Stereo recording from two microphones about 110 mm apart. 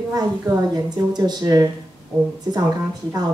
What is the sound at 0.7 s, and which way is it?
Speech, 40° right (ahead or behind).